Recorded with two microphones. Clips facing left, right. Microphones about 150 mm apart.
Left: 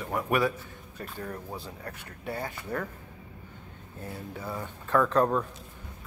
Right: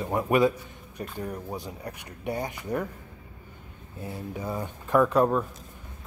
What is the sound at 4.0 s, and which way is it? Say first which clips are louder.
Speech: right 4 dB; 10° right (ahead or behind).